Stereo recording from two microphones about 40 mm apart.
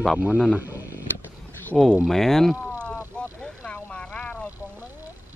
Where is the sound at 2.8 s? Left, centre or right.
Left.